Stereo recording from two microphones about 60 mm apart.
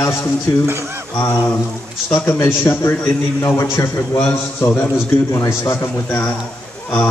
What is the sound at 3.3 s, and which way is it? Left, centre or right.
Speech, left.